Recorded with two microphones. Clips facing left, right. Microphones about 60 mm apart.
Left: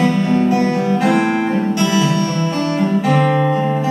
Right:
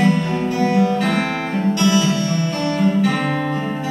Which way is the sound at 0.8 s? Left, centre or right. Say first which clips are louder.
Left 3 dB; centre.